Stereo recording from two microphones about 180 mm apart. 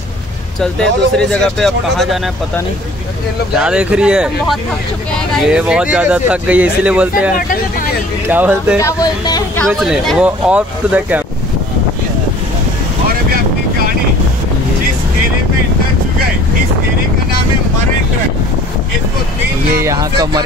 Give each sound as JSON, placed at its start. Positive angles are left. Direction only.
{"t": 0.6, "sound": "speech", "side_deg": 5}
{"t": 3.5, "sound": "speech", "side_deg": -5}
{"t": 8.7, "sound": "speech", "side_deg": 20}
{"t": 9.8, "sound": "speech", "side_deg": 0}
{"t": 19.8, "sound": "speech", "side_deg": -20}